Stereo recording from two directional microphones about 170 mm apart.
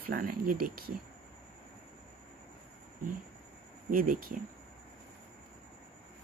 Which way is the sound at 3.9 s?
55° right (ahead or behind).